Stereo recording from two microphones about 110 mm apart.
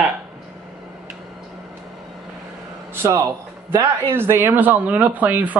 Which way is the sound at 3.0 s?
25° right (ahead or behind).